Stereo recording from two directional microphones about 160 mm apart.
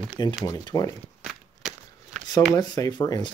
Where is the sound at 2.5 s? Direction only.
25° left (ahead or behind).